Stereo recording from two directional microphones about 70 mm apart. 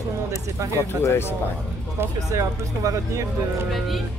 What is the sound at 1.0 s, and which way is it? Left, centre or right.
Speech, left.